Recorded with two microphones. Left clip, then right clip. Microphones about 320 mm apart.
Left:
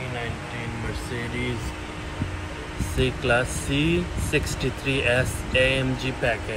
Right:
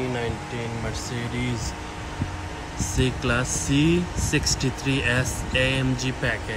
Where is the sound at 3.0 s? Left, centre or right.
Centre.